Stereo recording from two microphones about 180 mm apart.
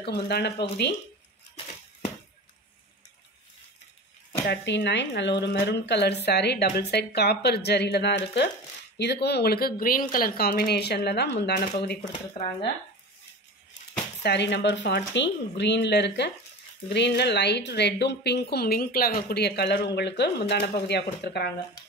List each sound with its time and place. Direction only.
0.0 s a woman's voice: 65° left (ahead or behind)
4.5 s a woman's voice: 75° left (ahead or behind)
14.2 s a woman's voice: 70° left (ahead or behind)